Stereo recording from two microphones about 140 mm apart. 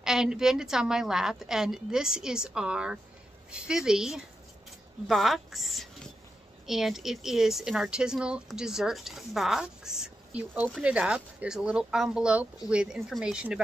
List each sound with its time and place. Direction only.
0.0 s speech: 5° right (ahead or behind)